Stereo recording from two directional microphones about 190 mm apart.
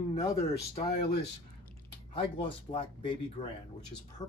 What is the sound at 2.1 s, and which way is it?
Speech, 25° left (ahead or behind).